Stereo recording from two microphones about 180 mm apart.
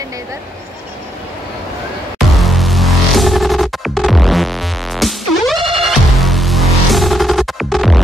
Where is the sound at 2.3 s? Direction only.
Centre (ahead or behind).